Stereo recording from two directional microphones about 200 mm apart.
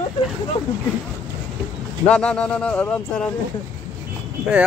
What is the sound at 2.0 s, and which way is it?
Speech, 5° left (ahead or behind).